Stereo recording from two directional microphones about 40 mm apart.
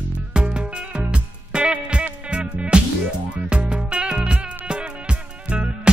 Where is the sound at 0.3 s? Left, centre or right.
Right.